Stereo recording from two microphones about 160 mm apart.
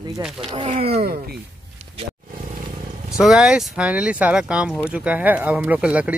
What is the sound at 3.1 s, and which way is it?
Speech, centre (ahead or behind).